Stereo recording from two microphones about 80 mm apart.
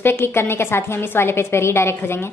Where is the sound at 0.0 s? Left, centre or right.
Left.